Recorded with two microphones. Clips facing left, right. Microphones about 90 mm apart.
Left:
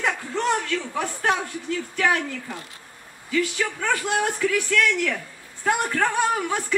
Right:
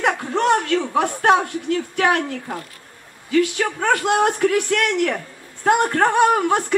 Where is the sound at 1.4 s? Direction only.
60° right (ahead or behind).